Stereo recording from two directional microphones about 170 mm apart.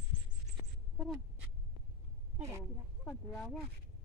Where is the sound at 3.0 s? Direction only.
5° left (ahead or behind).